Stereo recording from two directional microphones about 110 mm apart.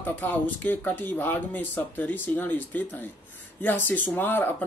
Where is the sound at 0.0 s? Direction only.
15° left (ahead or behind).